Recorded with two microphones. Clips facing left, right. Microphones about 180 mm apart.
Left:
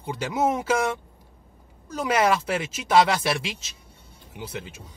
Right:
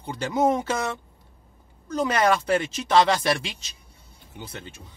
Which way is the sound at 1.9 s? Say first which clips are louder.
Even; 5° left (ahead or behind).